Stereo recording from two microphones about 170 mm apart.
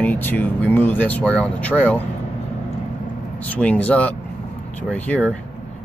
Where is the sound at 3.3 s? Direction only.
10° left (ahead or behind).